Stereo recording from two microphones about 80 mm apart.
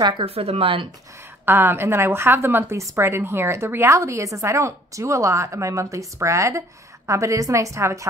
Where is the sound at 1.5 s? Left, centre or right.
Right.